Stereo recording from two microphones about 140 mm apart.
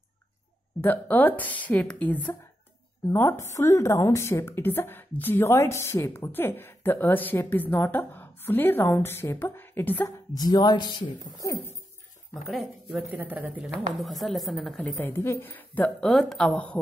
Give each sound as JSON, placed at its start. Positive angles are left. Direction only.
{"t": 0.7, "sound": "a woman's voice", "side_deg": 15}
{"t": 10.3, "sound": "speech", "side_deg": 30}
{"t": 12.4, "sound": "a woman's voice", "side_deg": 0}
{"t": 13.2, "sound": "a woman's voice", "side_deg": -10}
{"t": 14.8, "sound": "a woman's voice", "side_deg": 15}